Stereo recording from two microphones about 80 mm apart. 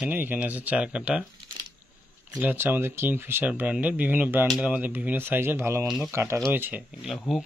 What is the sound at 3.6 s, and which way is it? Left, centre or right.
Speech, centre.